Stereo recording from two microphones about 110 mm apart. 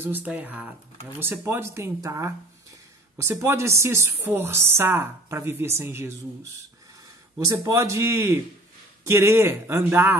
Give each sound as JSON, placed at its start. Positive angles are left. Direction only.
{"t": 0.0, "sound": "speech", "side_deg": -15}
{"t": 7.3, "sound": "speech", "side_deg": -30}